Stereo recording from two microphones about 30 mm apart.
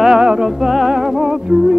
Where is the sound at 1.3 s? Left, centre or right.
Right.